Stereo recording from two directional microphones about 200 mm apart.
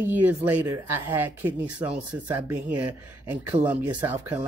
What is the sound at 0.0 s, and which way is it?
Speech, 10° right (ahead or behind).